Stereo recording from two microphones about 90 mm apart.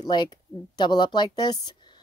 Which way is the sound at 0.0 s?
55° left (ahead or behind).